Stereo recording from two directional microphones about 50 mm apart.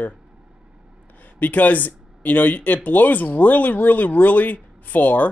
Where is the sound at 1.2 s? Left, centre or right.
Left.